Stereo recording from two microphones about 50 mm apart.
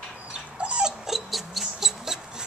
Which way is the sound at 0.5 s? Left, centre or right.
Centre.